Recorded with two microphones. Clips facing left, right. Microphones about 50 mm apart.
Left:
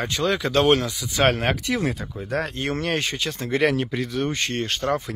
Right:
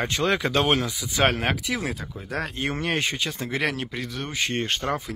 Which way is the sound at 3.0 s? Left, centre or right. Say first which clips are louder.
Even; right.